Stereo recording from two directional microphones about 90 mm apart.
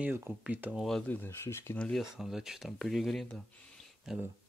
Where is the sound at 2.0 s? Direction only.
5° right (ahead or behind).